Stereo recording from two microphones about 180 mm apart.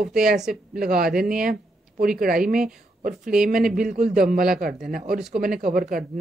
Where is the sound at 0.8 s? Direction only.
55° right (ahead or behind).